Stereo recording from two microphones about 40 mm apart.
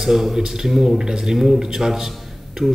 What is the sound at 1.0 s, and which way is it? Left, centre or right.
Speech, centre.